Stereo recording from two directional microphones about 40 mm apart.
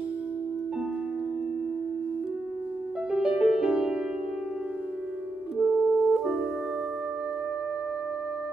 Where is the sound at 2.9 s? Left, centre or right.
Centre.